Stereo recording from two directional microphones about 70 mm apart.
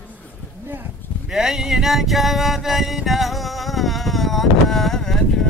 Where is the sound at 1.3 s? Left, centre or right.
Centre.